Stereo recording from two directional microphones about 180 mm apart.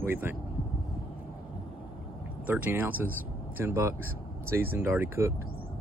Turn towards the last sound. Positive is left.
turn(degrees=-15)  # may be behind; listen again after turning